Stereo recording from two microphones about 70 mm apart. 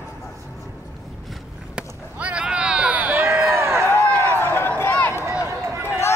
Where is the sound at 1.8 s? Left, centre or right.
Centre.